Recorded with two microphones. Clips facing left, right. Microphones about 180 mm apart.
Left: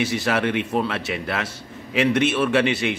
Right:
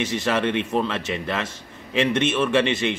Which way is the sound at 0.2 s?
10° left (ahead or behind).